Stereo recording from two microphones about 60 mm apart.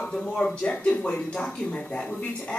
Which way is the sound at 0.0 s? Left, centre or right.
Centre.